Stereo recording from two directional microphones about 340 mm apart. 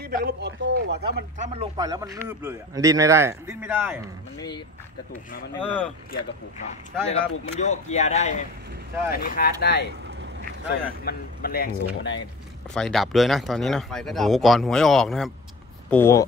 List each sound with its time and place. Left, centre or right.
0.0 s speech: right; by 4.0 s centre
5.1 s speech: centre
7.6 s speech: centre
12.7 s speech: centre